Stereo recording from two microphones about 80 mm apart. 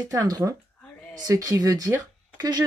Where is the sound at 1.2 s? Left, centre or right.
Right.